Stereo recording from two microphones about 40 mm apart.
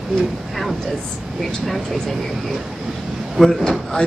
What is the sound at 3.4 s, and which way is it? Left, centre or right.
Speech, centre.